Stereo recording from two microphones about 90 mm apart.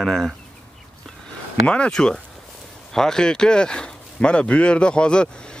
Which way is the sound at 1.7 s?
10° left (ahead or behind).